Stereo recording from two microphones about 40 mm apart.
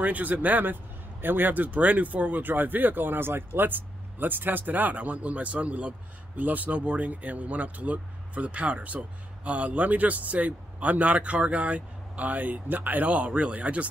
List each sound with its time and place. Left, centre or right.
0.0 s speech: right